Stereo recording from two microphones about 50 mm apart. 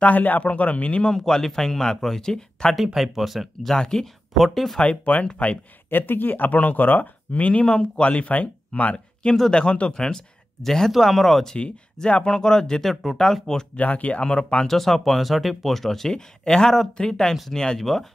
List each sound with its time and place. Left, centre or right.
0.0 s a man's voice: left
1.1 s speech: centre
2.7 s speech: centre
3.7 s speech: centre
4.7 s a man's voice: left
5.9 s speech: left
8.9 s speech: centre
11.5 s speech: left
12.9 s speech: centre
13.2 s speech: centre
13.7 s a man's voice: left
14.7 s speech: centre